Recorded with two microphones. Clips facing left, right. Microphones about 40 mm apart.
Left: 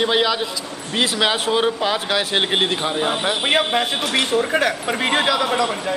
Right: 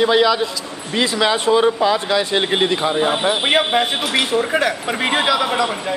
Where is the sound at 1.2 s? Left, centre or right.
Left.